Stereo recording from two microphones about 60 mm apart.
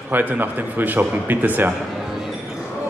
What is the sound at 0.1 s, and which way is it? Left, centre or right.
A man's voice, right.